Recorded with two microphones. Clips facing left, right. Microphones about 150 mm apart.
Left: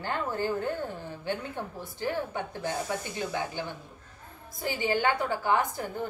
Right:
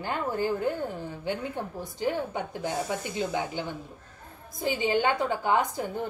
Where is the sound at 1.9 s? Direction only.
20° right (ahead or behind).